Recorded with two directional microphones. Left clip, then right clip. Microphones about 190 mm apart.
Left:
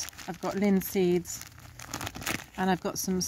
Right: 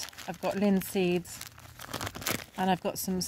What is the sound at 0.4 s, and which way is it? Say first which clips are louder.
Speech: even; 5° right (ahead or behind).